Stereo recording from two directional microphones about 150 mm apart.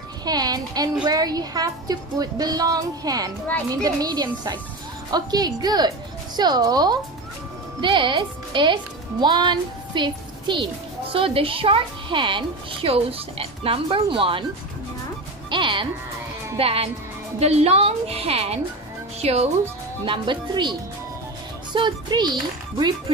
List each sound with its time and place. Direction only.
0.2 s a woman's voice: 25° right (ahead or behind)
15.5 s a woman's voice: 30° right (ahead or behind)
20.1 s a woman's voice: 30° right (ahead or behind)
21.7 s speech: 30° right (ahead or behind)